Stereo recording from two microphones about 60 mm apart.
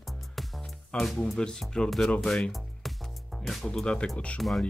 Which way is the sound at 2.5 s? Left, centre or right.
Centre.